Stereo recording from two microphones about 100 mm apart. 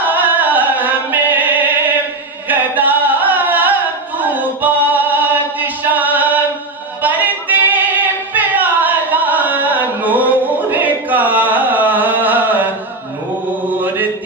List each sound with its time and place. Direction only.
0.1 s music: 20° right (ahead or behind)
2.4 s a sound: 20° right (ahead or behind)
4.2 s music: 15° right (ahead or behind)
8.4 s carnatic music: 15° right (ahead or behind)